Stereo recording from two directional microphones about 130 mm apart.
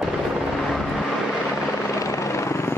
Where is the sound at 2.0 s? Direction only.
25° left (ahead or behind).